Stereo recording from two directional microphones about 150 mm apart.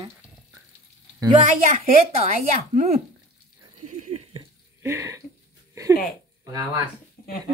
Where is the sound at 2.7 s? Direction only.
55° right (ahead or behind).